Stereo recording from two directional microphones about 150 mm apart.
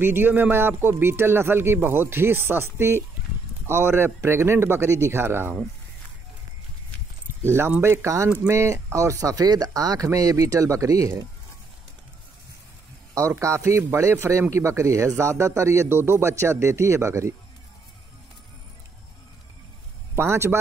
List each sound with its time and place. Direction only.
0.0 s a man's voice: 15° right (ahead or behind)
7.4 s a man's voice: 15° right (ahead or behind)
13.1 s a man's voice: 20° right (ahead or behind)
20.2 s a man's voice: 15° right (ahead or behind)